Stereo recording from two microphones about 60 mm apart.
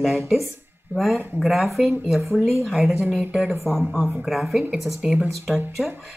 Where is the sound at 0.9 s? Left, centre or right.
Right.